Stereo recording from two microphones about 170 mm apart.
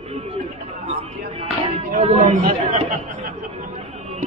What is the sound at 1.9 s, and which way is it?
Speech, 40° right (ahead or behind).